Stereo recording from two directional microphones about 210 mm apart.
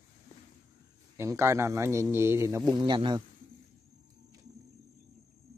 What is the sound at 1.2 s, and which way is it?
Speech, 15° right (ahead or behind).